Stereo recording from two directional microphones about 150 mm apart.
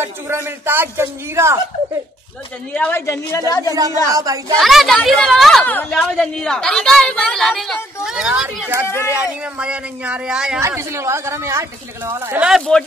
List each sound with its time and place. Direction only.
0.0 s a woman's voice: 15° right (ahead or behind)
2.7 s a man's voice: 10° left (ahead or behind)
4.1 s a woman's voice: 25° right (ahead or behind)
4.6 s a woman's voice: centre (ahead or behind)
8.8 s a man's voice: 15° left (ahead or behind)
9.4 s a woman's voice: 10° right (ahead or behind)
10.6 s a woman's voice: 20° right (ahead or behind)
12.4 s a woman's voice: centre (ahead or behind)